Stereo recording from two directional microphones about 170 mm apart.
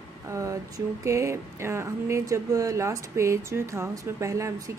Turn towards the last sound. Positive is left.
turn(degrees=-20)  # may be behind; listen again after turning